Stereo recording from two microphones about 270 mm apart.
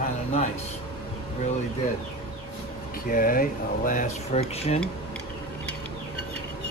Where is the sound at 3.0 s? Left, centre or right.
Left.